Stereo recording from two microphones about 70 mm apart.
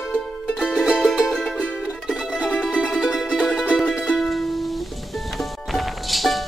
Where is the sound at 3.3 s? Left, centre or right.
Centre.